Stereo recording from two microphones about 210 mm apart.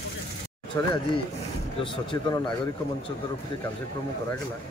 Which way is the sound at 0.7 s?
15° left (ahead or behind).